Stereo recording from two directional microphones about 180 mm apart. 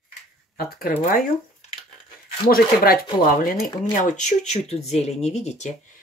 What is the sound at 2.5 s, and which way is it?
Speech, 55° left (ahead or behind).